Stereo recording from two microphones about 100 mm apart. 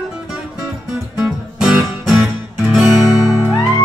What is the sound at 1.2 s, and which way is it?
Music, 10° right (ahead or behind).